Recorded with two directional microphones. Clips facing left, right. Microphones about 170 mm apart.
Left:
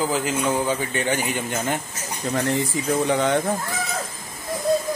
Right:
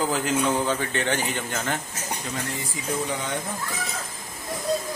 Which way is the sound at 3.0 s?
70° left (ahead or behind).